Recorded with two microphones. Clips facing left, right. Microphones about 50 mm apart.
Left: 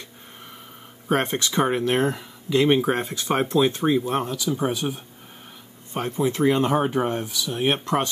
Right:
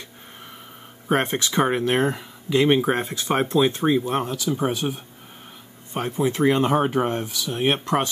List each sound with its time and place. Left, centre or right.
1.0 s speech: right